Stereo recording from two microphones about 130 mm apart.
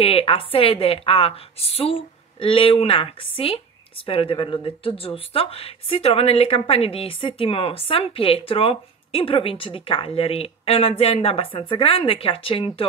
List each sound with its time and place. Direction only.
0.0 s a woman's voice: 45° left (ahead or behind)